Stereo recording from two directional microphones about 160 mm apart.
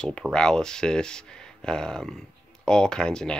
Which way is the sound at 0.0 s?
5° left (ahead or behind).